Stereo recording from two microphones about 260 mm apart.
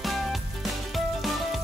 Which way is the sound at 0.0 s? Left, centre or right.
Centre.